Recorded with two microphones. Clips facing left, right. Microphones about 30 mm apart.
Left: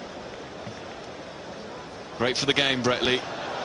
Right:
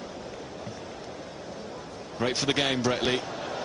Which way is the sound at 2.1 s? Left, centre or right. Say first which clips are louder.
Left 3 dB; left.